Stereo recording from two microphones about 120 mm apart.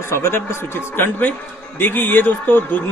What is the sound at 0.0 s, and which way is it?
A man's voice, 20° left (ahead or behind).